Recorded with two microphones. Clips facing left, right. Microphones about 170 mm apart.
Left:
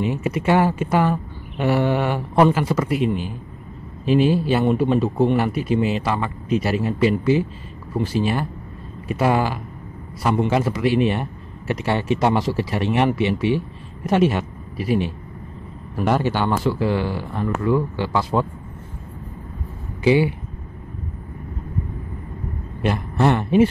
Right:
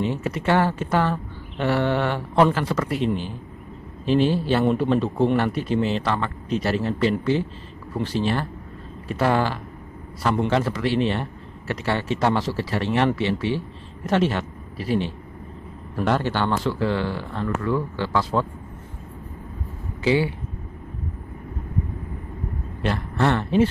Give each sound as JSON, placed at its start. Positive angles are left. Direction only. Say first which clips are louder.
{"t": 0.0, "sound": "a man's voice", "louder": "left 3 dB", "side_deg": 10}
{"t": 20.0, "sound": "a man's voice", "louder": "left 4 dB", "side_deg": 15}
{"t": 22.8, "sound": "a man's voice", "louder": "left 3 dB", "side_deg": 15}